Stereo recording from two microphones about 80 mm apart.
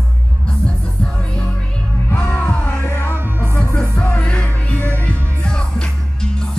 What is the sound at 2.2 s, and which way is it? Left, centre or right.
Music, centre.